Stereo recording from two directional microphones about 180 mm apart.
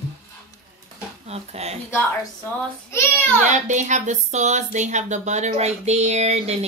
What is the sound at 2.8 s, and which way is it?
Speech, 15° left (ahead or behind).